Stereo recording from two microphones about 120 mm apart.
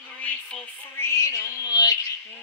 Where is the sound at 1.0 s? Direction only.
25° left (ahead or behind).